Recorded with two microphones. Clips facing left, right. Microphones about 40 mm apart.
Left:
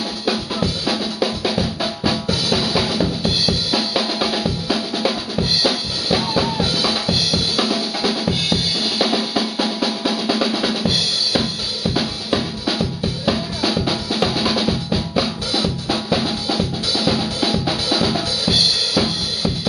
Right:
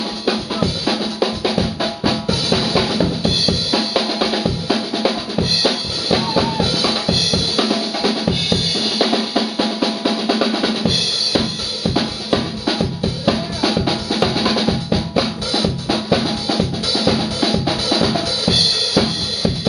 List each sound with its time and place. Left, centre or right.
0.2 s drum: centre